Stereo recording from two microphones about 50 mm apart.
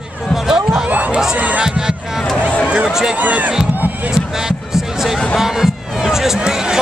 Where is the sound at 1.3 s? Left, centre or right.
Right.